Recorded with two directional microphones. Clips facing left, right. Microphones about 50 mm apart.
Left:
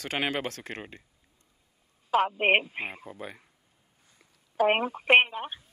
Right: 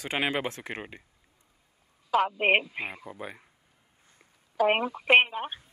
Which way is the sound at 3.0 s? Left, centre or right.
Centre.